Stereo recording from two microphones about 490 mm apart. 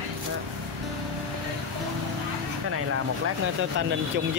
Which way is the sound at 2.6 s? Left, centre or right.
Right.